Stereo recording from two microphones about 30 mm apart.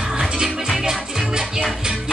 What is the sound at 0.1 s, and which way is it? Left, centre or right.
Music, centre.